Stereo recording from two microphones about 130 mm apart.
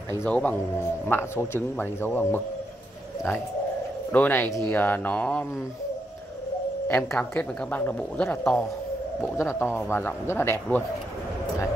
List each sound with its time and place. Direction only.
0.1 s a man's voice: 15° left (ahead or behind)
4.1 s a man's voice: 15° left (ahead or behind)
7.0 s a man's voice: 5° left (ahead or behind)
9.2 s speech: 20° left (ahead or behind)